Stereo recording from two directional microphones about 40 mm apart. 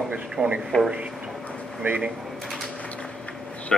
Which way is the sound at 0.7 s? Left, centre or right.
Left.